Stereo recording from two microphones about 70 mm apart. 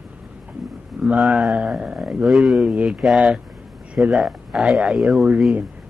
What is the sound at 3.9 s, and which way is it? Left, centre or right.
Speech, centre.